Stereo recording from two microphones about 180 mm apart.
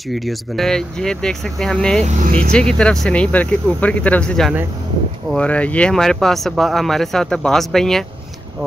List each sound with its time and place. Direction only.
0.1 s speech: centre (ahead or behind)
2.0 s speech: 45° right (ahead or behind)
2.3 s speech: 5° left (ahead or behind)